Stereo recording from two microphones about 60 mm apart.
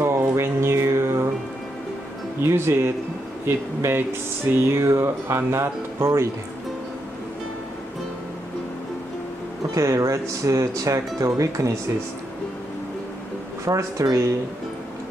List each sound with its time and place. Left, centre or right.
0.0 s music: right
2.4 s speech: right
9.8 s speech: right
13.7 s speech: right